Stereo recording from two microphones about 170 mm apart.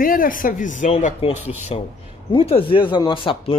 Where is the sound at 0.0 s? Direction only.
55° left (ahead or behind).